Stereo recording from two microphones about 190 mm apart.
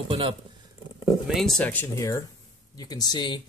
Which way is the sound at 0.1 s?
30° right (ahead or behind).